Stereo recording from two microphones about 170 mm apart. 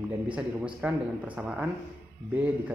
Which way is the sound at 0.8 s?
10° right (ahead or behind).